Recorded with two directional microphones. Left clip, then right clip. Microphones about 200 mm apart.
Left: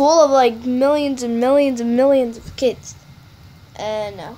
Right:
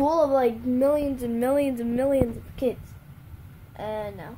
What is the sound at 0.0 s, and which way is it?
A woman's voice, 15° left (ahead or behind).